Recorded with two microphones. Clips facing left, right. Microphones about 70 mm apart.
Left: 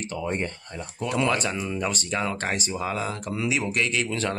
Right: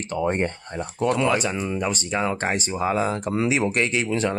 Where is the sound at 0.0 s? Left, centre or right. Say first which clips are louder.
Right 5 dB; right.